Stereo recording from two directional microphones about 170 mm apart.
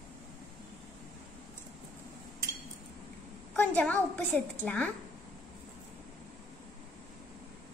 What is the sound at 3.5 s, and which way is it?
A woman's voice, 10° left (ahead or behind).